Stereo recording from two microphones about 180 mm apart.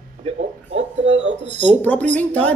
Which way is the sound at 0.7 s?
40° right (ahead or behind).